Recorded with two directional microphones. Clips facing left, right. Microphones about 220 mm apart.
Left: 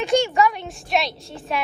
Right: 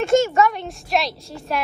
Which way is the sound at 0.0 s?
Centre (ahead or behind).